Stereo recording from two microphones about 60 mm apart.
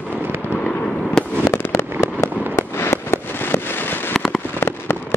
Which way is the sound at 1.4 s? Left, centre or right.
Left.